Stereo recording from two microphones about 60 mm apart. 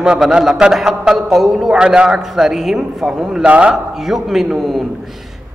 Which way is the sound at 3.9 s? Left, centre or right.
Centre.